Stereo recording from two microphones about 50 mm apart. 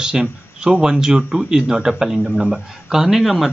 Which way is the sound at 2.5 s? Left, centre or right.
Centre.